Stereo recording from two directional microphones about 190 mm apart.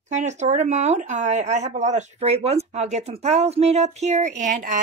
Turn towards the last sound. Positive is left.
turn(degrees=-45)  # may be behind; listen again after turning